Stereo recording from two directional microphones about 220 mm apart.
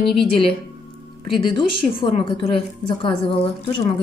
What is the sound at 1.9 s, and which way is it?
A woman's voice, 25° left (ahead or behind).